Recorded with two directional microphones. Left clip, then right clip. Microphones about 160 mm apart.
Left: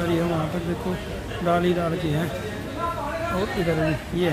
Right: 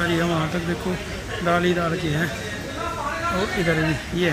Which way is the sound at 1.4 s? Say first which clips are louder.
Right 1 dB; 5° left (ahead or behind).